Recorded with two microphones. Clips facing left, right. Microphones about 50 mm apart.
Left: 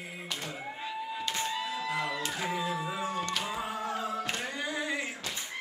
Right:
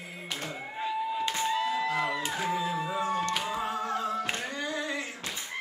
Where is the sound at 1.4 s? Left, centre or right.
Centre.